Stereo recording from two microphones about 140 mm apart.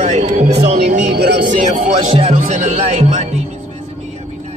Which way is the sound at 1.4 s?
65° right (ahead or behind).